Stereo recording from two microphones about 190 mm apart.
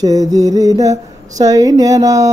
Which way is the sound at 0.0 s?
20° right (ahead or behind).